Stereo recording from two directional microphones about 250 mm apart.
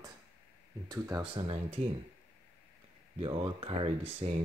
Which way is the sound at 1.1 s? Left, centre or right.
Centre.